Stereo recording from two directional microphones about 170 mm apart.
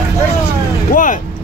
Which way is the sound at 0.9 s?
50° left (ahead or behind).